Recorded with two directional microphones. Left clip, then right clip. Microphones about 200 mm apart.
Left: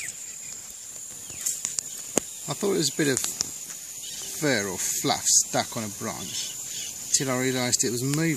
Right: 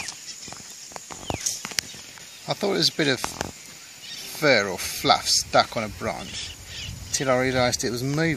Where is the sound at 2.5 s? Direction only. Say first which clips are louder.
Right 3 dB; 5° right (ahead or behind).